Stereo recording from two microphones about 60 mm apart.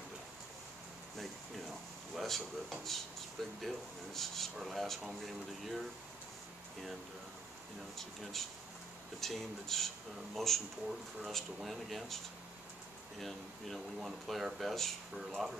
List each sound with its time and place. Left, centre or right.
1.1 s speech: centre
8.0 s speech: centre
13.9 s speech: centre